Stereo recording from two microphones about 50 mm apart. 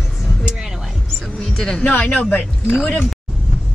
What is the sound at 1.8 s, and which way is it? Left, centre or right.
Speech, left.